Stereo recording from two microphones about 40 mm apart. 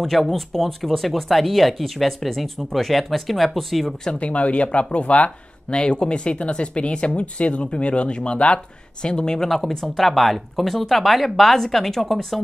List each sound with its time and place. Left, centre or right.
0.1 s speech: centre
4.1 s speech: left
5.7 s speech: left; by 12.4 s centre